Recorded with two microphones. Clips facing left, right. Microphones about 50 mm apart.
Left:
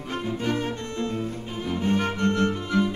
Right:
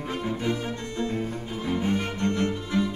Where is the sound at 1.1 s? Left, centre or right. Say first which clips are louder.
Even; right.